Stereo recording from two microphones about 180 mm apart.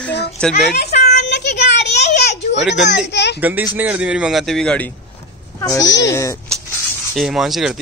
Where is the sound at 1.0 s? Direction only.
65° left (ahead or behind).